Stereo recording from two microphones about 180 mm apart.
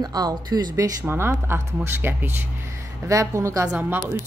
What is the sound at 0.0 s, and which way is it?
A woman's voice, 20° right (ahead or behind).